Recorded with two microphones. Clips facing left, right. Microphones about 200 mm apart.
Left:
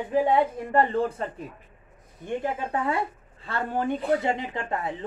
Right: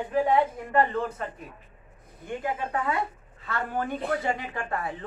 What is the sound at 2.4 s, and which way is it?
A man's voice, 30° left (ahead or behind).